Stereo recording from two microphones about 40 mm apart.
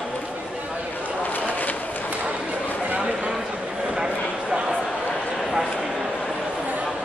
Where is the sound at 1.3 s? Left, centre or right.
Left.